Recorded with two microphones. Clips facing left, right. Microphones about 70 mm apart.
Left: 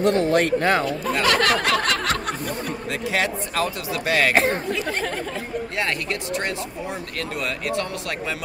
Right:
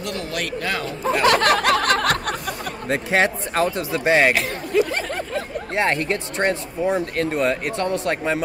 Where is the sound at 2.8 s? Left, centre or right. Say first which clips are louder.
Right 6 dB; right.